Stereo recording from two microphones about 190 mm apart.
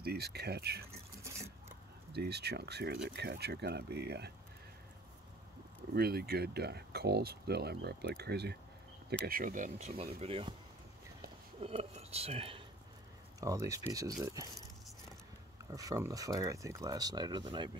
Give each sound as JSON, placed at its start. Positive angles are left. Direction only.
{"t": 0.0, "sound": "speech", "side_deg": -55}
{"t": 2.1, "sound": "speech", "side_deg": -60}
{"t": 5.9, "sound": "speech", "side_deg": -55}
{"t": 9.2, "sound": "speech", "side_deg": -50}
{"t": 11.6, "sound": "speech", "side_deg": -30}
{"t": 13.4, "sound": "speech", "side_deg": -15}
{"t": 15.7, "sound": "speech", "side_deg": -20}